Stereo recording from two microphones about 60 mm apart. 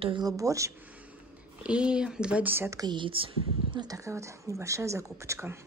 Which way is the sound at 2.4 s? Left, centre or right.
Right.